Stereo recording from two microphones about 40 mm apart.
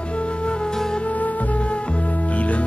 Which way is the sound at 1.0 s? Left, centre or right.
Left.